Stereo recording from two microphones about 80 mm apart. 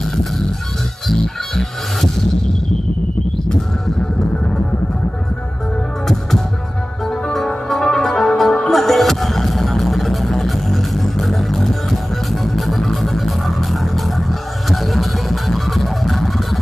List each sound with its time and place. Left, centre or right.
1.0 s music: centre
7.1 s music: centre
14.7 s a sound: centre